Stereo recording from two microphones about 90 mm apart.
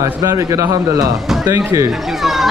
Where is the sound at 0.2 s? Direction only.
40° right (ahead or behind).